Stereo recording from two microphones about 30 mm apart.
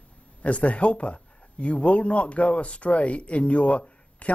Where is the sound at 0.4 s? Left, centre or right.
Left.